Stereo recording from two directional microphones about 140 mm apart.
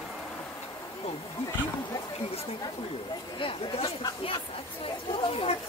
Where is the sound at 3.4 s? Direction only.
40° left (ahead or behind).